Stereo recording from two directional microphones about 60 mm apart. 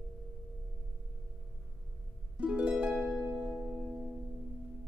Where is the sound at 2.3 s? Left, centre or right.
Right.